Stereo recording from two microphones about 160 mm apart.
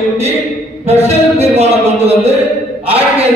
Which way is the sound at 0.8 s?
40° right (ahead or behind).